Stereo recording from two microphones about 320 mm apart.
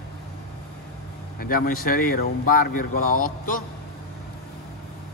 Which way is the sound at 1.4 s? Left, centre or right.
Left.